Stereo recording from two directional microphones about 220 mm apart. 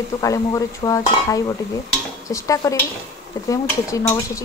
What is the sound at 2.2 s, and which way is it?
Speech, 15° left (ahead or behind).